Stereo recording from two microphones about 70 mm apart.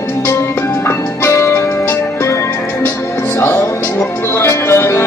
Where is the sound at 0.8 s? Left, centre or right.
Left.